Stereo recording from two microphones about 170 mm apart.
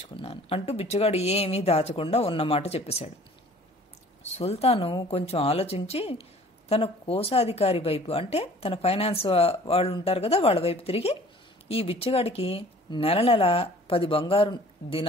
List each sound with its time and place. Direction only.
0.0 s a woman's voice: 35° left (ahead or behind)
4.4 s a woman's voice: 35° left (ahead or behind)